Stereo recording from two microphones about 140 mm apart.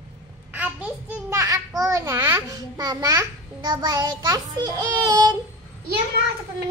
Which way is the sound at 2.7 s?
25° right (ahead or behind).